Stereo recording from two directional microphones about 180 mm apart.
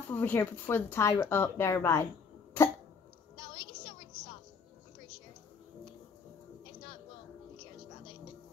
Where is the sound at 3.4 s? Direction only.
30° left (ahead or behind).